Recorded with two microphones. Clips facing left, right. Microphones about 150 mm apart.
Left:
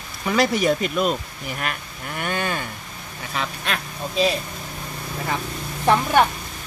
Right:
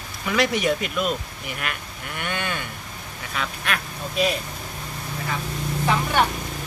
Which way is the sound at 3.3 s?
25° left (ahead or behind).